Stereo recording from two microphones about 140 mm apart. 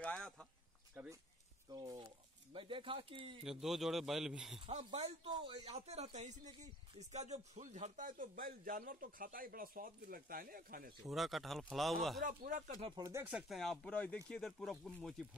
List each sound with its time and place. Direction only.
0.0 s speech: 5° left (ahead or behind)
1.7 s speech: 30° right (ahead or behind)
3.4 s speech: 5° right (ahead or behind)
4.6 s speech: 45° right (ahead or behind); by 11.0 s 90° right
11.1 s speech: centre (ahead or behind)
12.2 s speech: 70° right (ahead or behind)
13.0 s speech: 20° right (ahead or behind)
13.3 s speech: 5° right (ahead or behind)